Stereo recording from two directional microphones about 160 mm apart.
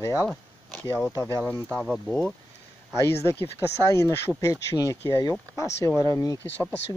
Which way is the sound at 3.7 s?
15° left (ahead or behind).